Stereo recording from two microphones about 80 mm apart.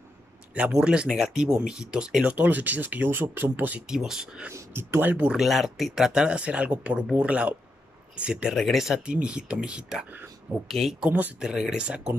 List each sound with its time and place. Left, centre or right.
0.6 s speech: centre
3.8 s speech: centre
4.5 s speech: right
5.4 s speech: centre
8.5 s speech: centre
10.7 s speech: centre
11.1 s speech: right
11.4 s speech: centre